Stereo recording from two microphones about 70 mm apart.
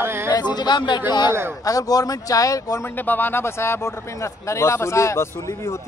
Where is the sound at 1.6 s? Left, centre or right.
Left.